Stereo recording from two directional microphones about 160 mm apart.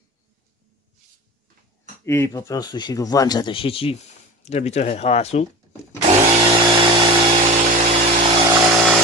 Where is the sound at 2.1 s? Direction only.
15° left (ahead or behind); by 5.5 s 40° left (ahead or behind).